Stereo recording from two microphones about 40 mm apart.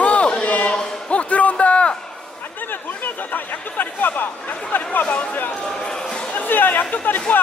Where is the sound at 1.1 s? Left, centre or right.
Left.